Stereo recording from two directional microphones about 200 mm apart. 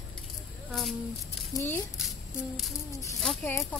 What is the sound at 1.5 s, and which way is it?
Speech, 15° left (ahead or behind).